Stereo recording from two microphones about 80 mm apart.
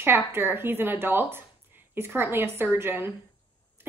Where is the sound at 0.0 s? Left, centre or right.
Right.